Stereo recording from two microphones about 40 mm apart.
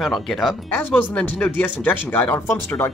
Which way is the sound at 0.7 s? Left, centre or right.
Left.